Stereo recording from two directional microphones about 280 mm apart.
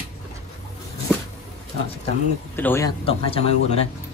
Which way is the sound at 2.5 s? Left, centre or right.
Centre.